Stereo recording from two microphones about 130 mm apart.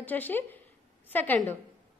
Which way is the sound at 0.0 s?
15° left (ahead or behind).